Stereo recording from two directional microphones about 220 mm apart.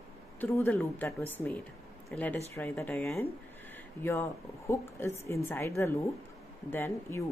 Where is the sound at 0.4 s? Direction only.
10° left (ahead or behind).